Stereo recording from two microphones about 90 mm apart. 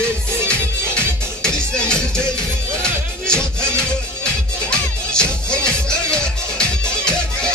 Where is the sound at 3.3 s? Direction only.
10° left (ahead or behind).